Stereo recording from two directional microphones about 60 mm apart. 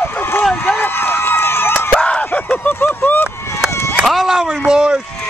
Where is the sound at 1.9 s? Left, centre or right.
Centre.